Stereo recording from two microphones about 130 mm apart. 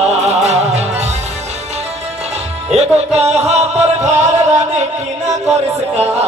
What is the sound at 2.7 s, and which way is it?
Music, 55° right (ahead or behind).